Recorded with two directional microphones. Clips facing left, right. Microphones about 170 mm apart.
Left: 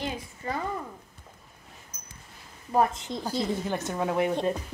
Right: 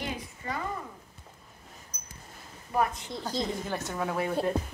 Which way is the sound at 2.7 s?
30° left (ahead or behind).